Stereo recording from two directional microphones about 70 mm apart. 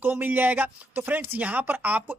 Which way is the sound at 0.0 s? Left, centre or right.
Right.